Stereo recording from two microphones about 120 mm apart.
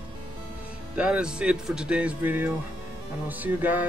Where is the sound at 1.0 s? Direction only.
10° right (ahead or behind).